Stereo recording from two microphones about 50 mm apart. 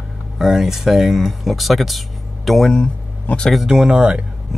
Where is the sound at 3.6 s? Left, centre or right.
Centre.